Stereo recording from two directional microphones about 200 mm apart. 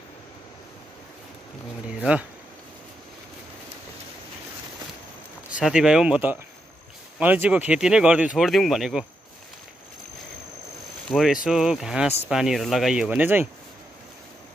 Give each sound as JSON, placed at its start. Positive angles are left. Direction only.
{"t": 5.6, "sound": "speech", "side_deg": -5}
{"t": 11.1, "sound": "speech", "side_deg": 0}